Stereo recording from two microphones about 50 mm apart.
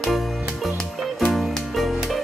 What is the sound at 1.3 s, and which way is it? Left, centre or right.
Music, centre.